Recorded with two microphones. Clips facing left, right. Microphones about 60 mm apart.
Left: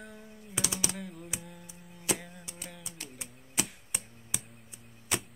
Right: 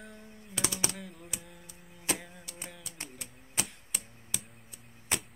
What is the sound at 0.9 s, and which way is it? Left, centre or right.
Typewriter, centre.